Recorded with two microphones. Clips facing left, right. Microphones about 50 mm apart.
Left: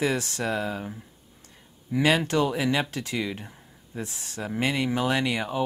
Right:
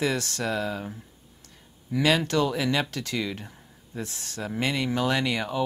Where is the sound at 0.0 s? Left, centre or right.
Left.